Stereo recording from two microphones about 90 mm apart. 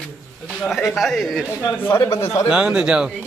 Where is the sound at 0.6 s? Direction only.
Centre (ahead or behind).